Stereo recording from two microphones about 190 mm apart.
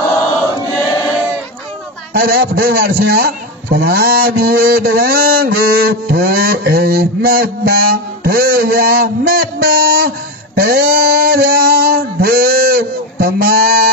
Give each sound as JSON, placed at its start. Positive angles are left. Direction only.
{"t": 0.6, "sound": "choir", "side_deg": 20}
{"t": 2.1, "sound": "a man's voice", "side_deg": -50}